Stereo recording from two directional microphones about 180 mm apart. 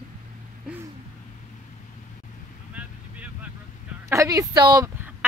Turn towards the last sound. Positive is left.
turn(degrees=-20)  # may be behind; listen again after turning